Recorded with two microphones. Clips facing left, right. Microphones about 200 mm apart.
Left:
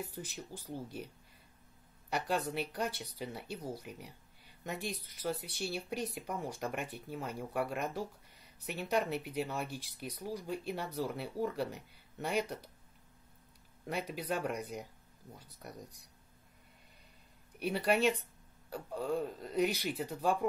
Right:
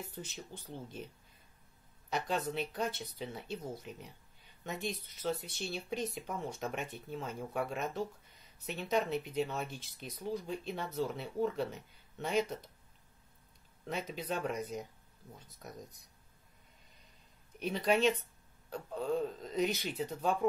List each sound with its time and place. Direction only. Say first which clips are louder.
0.0 s speech: left 2 dB; 15° left (ahead or behind)
2.0 s speech: even; 10° left (ahead or behind)
13.8 s speech: left 1 dB; 10° left (ahead or behind)
17.6 s speech: even; 10° left (ahead or behind)